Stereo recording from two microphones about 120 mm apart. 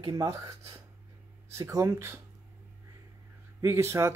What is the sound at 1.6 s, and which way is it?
Speech, 25° right (ahead or behind).